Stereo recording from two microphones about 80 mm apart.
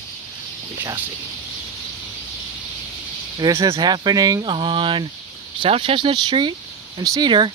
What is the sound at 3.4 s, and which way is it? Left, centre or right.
Speech, right.